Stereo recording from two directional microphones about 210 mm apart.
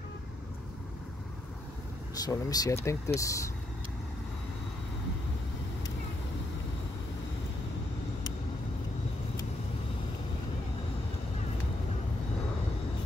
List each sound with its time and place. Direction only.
2.1 s speech: 15° left (ahead or behind)